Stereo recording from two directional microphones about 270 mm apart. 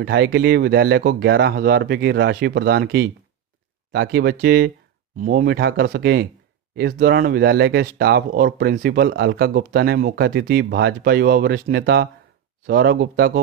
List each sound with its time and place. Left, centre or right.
0.0 s speech: right